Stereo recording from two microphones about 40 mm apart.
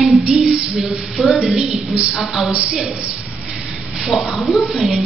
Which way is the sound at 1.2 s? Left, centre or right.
Right.